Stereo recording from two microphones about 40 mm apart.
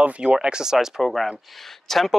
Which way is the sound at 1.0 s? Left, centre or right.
Centre.